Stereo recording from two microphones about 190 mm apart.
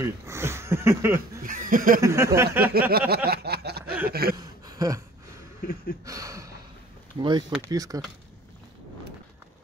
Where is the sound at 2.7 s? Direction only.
55° right (ahead or behind).